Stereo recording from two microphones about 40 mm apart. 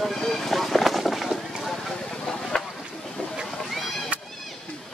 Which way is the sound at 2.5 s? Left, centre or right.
Centre.